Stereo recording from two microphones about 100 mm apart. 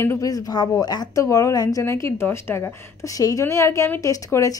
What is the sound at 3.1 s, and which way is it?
Speech, 35° left (ahead or behind).